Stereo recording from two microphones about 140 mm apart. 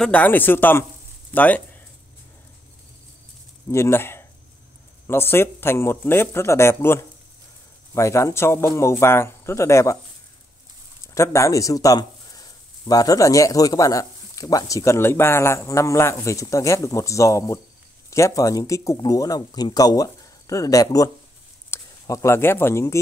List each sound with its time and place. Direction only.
0.0 s speech: 10° left (ahead or behind)
3.7 s speech: 20° left (ahead or behind)
11.1 s speech: 20° left (ahead or behind)